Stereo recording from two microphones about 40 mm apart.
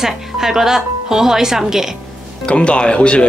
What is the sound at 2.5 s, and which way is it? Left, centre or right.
Speech, left.